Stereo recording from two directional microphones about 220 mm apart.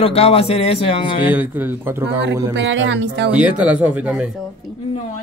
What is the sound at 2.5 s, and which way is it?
Speech, 55° right (ahead or behind).